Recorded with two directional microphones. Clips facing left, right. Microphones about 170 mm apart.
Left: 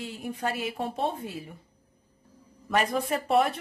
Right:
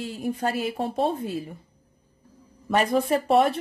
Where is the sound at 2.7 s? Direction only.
30° right (ahead or behind).